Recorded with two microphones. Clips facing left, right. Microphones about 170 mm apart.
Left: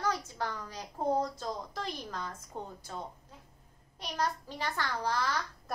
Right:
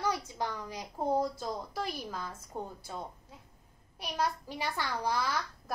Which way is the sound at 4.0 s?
10° right (ahead or behind).